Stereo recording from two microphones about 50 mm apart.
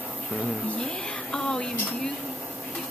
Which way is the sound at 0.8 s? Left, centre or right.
Centre.